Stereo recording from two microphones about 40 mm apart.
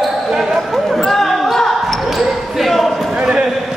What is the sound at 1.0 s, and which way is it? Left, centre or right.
Basketball bounce, centre.